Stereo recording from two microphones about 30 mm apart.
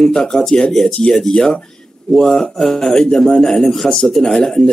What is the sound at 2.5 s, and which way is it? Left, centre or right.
Speech, centre.